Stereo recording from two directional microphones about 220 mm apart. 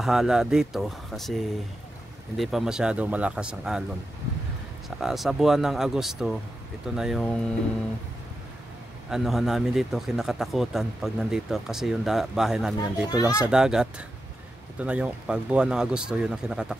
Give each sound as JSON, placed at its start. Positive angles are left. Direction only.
{"t": 0.0, "sound": "speech", "side_deg": 0}
{"t": 4.8, "sound": "speech", "side_deg": 0}
{"t": 9.1, "sound": "speech", "side_deg": 0}
{"t": 13.1, "sound": "speech", "side_deg": 15}
{"t": 13.5, "sound": "speech", "side_deg": -5}